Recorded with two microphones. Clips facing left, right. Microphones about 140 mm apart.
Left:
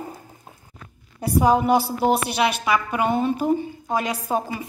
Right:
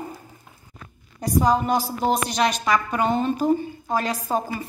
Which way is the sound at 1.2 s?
10° left (ahead or behind).